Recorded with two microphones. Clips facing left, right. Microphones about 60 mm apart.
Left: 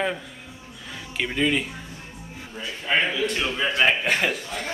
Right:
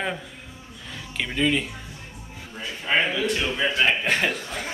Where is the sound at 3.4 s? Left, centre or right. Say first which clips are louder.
Left 3 dB; centre.